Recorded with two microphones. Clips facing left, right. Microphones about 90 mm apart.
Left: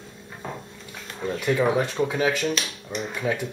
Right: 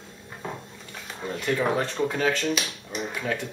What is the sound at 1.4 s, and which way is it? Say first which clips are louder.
Speech: left 3 dB; 10° left (ahead or behind).